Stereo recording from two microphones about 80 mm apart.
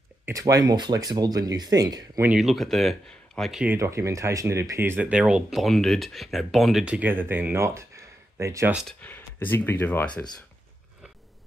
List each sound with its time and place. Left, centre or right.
0.3 s speech: right
2.3 s speech: centre
3.7 s speech: right
5.1 s speech: centre
5.5 s speech: centre
6.8 s speech: centre; by 8.6 s right
9.0 s speech: left